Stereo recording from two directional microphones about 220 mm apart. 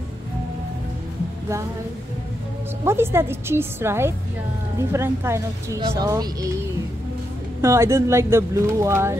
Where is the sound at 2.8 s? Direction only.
10° right (ahead or behind).